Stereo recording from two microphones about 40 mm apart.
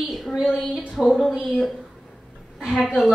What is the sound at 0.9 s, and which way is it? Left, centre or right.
Speech, centre.